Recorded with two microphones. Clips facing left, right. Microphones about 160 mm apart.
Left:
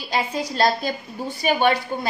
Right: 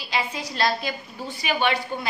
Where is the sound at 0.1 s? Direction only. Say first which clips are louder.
Left 4 dB; 45° left (ahead or behind).